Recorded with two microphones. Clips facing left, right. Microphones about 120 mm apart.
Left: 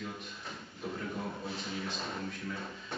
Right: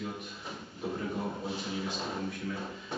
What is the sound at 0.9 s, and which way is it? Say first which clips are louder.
Speech: right 4 dB; 20° right (ahead or behind).